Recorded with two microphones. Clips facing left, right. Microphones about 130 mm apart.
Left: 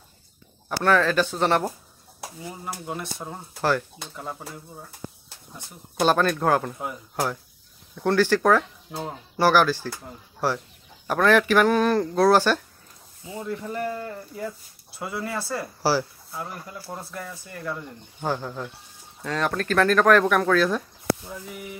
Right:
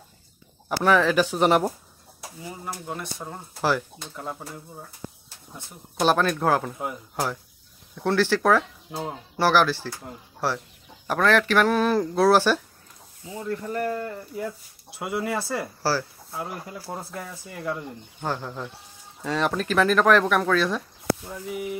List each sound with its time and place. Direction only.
0.7 s speech: 10° right (ahead or behind)
2.4 s speech: 5° left (ahead or behind)
5.5 s speech: centre (ahead or behind)
13.3 s speech: 10° left (ahead or behind)
15.0 s speech: 15° right (ahead or behind)
15.8 s speech: 10° left (ahead or behind)
17.1 s speech: 15° right (ahead or behind)
18.2 s speech: centre (ahead or behind)